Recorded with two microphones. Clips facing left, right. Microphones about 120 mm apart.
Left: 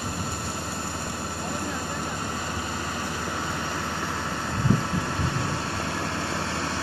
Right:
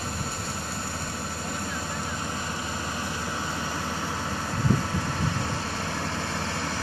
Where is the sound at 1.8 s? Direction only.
15° left (ahead or behind).